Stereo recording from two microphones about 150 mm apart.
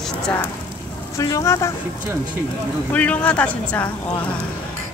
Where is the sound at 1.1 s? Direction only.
20° left (ahead or behind).